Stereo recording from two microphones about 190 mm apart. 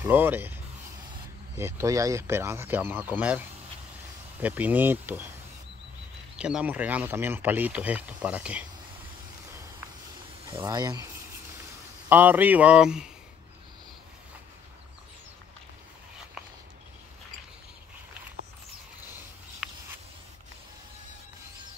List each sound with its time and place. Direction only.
0.0 s speech: 10° right (ahead or behind)
1.6 s speech: 15° right (ahead or behind)
6.3 s speech: 5° right (ahead or behind)
10.5 s speech: 20° right (ahead or behind)
12.1 s speech: 10° right (ahead or behind)
19.6 s a sound: 5° right (ahead or behind)